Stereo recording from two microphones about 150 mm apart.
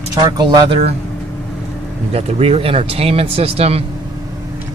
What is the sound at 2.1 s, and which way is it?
Speech, 40° right (ahead or behind).